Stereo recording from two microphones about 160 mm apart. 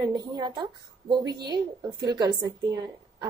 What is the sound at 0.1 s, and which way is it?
A woman's voice, 25° right (ahead or behind).